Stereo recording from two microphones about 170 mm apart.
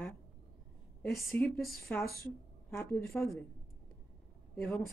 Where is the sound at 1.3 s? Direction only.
10° left (ahead or behind).